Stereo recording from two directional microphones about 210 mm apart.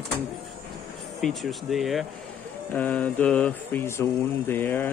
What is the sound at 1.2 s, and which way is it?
Mantra, centre (ahead or behind).